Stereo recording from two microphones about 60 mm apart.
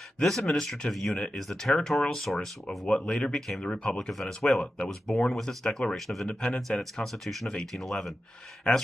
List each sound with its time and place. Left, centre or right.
0.2 s speech: centre
6.2 s speech: centre
6.8 s speech: centre